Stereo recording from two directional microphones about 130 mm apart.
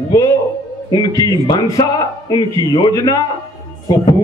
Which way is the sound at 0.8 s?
30° left (ahead or behind).